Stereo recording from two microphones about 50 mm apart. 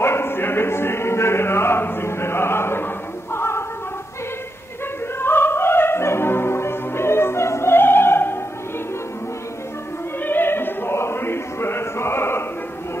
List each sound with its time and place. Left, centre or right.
0.0 s chant: left
5.2 s opera: left
7.7 s opera: left
10.2 s opera: left